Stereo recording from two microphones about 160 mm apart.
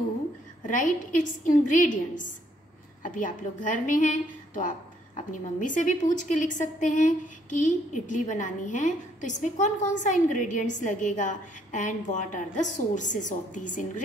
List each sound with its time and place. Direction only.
0.7 s a woman's voice: 55° left (ahead or behind)